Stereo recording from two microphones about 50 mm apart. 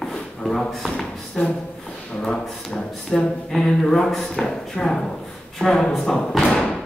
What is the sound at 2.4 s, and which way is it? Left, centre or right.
Speech, centre.